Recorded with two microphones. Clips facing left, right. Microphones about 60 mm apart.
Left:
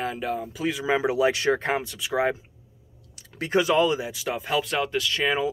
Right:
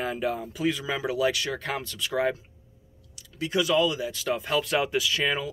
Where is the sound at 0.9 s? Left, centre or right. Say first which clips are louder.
Left 4 dB; left.